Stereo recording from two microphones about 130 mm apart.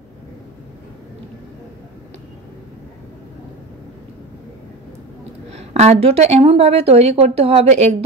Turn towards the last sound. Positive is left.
turn(degrees=-55)  # may be behind; listen again after turning